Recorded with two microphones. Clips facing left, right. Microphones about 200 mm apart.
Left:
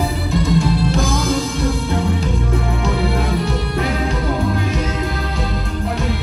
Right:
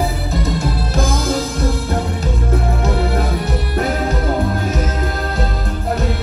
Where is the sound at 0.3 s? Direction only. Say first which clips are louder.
Left 3 dB; centre (ahead or behind).